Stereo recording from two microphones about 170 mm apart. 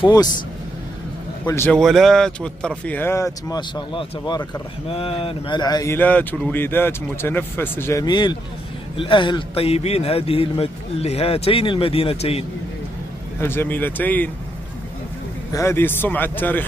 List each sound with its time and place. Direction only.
0.0 s speech: 25° left (ahead or behind)
1.4 s a man's voice: 15° left (ahead or behind)
1.7 s speech: centre (ahead or behind); by 5.9 s 25° left (ahead or behind)
5.9 s speech: 10° left (ahead or behind); by 12.4 s 35° left (ahead or behind)
13.4 s speech: 15° left (ahead or behind)
15.5 s speech: 15° left (ahead or behind)